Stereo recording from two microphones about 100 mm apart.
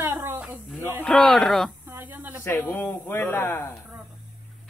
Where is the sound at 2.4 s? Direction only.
25° left (ahead or behind).